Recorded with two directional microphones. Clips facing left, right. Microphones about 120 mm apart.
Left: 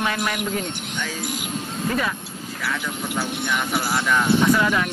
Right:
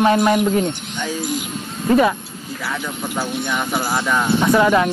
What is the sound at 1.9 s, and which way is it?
Speech, 30° right (ahead or behind).